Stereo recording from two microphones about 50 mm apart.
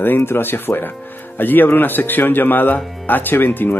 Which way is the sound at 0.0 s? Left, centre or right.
Left.